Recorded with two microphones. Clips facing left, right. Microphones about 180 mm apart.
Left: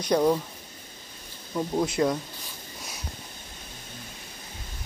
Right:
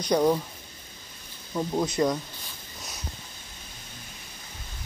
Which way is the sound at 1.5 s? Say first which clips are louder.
Left 1 dB; 5° right (ahead or behind).